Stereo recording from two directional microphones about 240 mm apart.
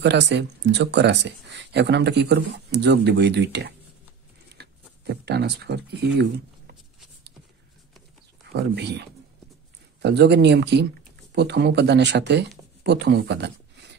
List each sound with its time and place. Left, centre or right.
0.0 s speech: right
4.5 s a sound: right
5.1 s speech: right
8.5 s speech: right